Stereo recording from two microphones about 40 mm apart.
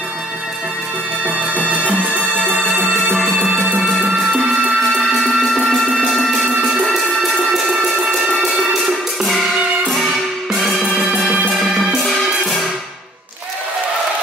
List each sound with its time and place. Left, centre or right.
1.2 s music: right
4.9 s music: centre